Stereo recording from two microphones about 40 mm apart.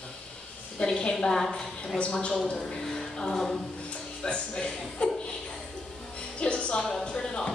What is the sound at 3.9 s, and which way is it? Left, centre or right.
A woman's voice, left.